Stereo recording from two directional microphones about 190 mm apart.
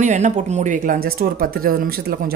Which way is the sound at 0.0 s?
40° right (ahead or behind).